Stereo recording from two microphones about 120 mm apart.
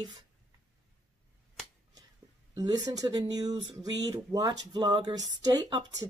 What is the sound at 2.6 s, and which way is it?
Speech, 30° right (ahead or behind).